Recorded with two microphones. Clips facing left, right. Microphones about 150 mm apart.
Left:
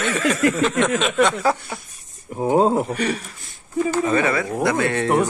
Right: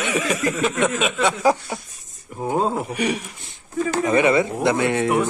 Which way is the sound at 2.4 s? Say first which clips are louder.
Left 5 dB; 25° left (ahead or behind).